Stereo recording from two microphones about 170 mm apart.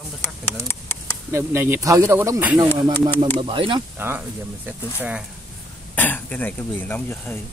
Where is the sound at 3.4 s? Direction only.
30° right (ahead or behind).